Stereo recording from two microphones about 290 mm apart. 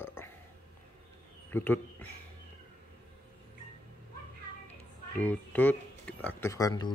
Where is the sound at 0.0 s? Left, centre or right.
Centre.